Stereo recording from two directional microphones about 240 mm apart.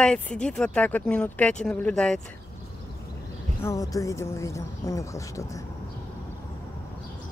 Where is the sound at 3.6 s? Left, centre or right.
Centre.